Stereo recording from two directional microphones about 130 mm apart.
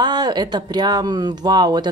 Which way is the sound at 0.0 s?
35° right (ahead or behind).